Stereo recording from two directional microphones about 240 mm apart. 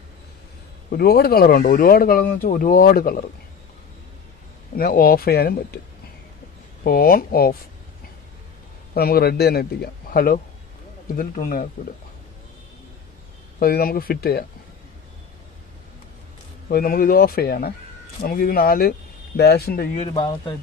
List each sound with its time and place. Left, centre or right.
0.9 s speech: left
4.7 s speech: left
6.8 s speech: left
8.9 s speech: left
13.6 s speech: left
16.6 s speech: left
20.1 s speech: centre